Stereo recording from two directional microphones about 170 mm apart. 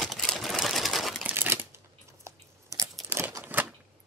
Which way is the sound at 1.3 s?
15° right (ahead or behind).